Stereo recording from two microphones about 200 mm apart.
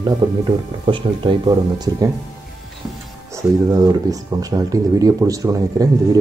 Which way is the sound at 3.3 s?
15° right (ahead or behind).